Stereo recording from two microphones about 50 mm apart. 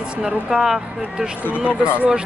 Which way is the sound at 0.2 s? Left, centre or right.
Centre.